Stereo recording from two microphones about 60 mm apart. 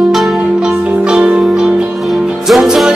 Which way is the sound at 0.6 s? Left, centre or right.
Centre.